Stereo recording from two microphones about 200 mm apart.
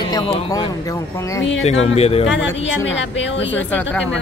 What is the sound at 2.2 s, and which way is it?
A woman's voice, 65° left (ahead or behind).